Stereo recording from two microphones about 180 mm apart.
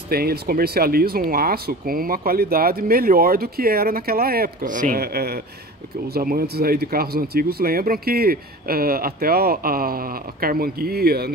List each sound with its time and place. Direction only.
0.1 s speech: 60° right (ahead or behind)